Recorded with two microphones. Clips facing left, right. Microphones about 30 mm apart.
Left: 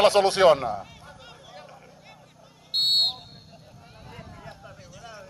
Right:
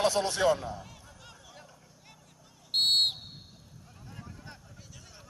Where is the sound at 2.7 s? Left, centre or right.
Centre.